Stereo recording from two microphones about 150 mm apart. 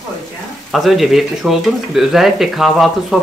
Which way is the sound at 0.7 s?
Centre (ahead or behind).